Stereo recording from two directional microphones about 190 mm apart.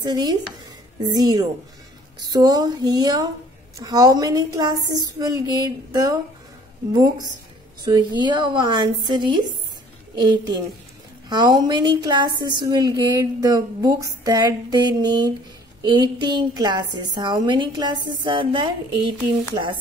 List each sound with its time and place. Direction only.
0.0 s a woman's voice: 20° right (ahead or behind)